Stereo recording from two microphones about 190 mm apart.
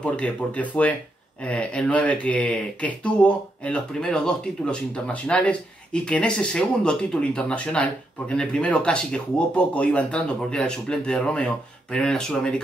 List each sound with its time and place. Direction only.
0.0 s speech: 5° left (ahead or behind)